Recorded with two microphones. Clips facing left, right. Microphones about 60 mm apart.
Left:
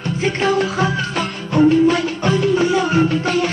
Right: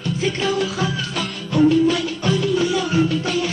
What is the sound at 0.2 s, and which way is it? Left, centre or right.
Music, left.